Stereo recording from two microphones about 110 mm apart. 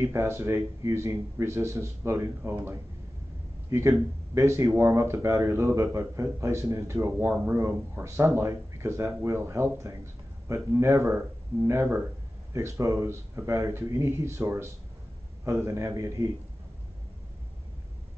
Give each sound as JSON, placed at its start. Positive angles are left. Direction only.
{"t": 0.0, "sound": "a man's voice", "side_deg": -25}